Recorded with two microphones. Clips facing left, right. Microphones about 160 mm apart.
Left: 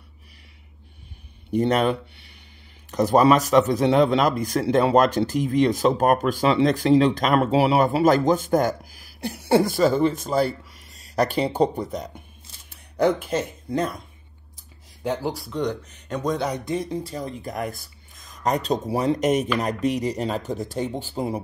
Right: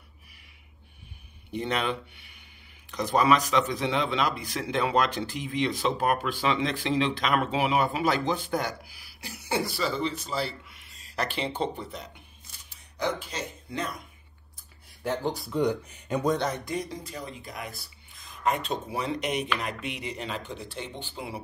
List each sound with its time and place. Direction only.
1.5 s a man's voice: 40° left (ahead or behind)
12.6 s a sound: 55° left (ahead or behind)
13.7 s speech: 40° left (ahead or behind)
15.0 s speech: 5° left (ahead or behind)
16.3 s speech: 15° left (ahead or behind)
16.7 s speech: 35° left (ahead or behind)